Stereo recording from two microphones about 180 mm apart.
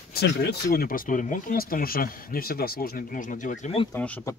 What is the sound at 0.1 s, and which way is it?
Speech, 65° left (ahead or behind).